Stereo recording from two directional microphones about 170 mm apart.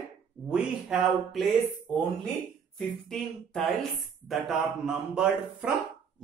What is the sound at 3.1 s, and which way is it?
A man's voice, 5° left (ahead or behind).